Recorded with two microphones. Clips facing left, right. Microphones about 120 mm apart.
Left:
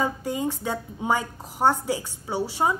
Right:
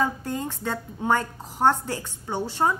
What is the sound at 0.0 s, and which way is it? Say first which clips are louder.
A woman's voice: left 1 dB; 10° left (ahead or behind).